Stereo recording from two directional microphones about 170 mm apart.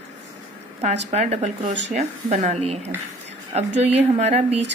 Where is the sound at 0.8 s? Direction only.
40° right (ahead or behind).